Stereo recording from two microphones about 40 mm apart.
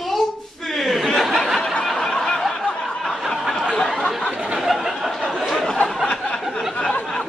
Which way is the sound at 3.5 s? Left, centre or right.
Left.